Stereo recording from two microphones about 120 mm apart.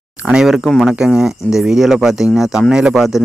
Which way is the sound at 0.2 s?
5° right (ahead or behind).